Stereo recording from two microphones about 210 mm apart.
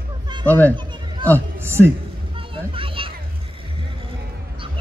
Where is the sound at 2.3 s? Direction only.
25° right (ahead or behind).